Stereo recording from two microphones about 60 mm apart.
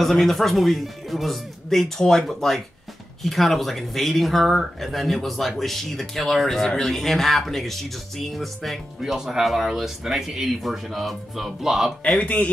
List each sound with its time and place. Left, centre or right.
0.0 s speech: centre
12.2 s speech: left